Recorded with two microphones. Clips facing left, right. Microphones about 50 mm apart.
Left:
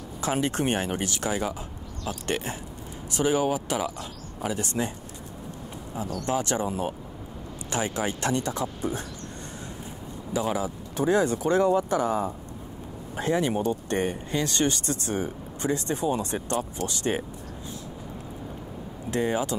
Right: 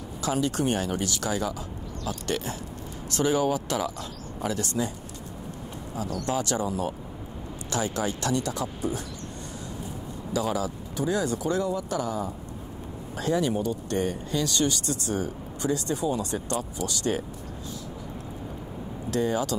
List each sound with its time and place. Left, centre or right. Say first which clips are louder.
0.2 s speech: even; left
3.1 s speech: even; centre
4.6 s speech: even; left
5.9 s speech: left 1 dB; left
10.3 s speech: even; left
19.0 s speech: even; left